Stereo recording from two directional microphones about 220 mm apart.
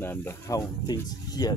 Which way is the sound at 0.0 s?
10° left (ahead or behind).